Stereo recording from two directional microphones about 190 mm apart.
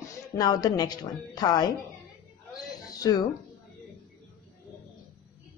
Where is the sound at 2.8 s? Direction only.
20° left (ahead or behind).